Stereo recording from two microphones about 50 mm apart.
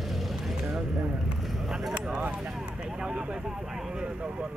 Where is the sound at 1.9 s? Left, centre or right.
Centre.